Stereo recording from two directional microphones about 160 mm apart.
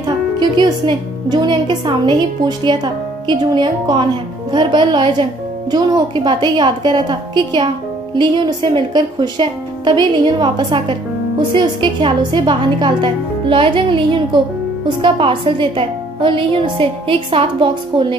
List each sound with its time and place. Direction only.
0.4 s a woman's voice: 25° right (ahead or behind)